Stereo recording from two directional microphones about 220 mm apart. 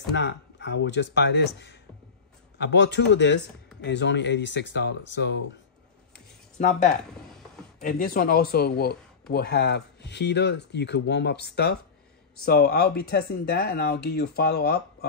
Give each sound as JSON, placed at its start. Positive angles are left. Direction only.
{"t": 0.1, "sound": "speech", "side_deg": 55}
{"t": 6.1, "sound": "a sound", "side_deg": 35}
{"t": 7.8, "sound": "speech", "side_deg": 40}